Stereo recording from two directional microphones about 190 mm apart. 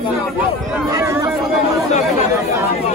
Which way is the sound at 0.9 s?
15° right (ahead or behind).